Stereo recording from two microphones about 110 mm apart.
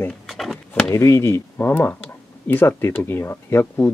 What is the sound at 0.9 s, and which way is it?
Speech, 25° left (ahead or behind).